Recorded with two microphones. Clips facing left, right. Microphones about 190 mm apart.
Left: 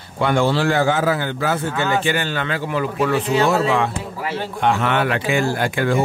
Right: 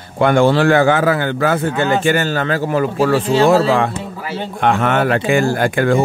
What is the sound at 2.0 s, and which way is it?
Speech, 45° right (ahead or behind).